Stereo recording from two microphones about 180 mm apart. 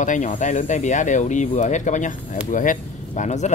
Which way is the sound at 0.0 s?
45° left (ahead or behind).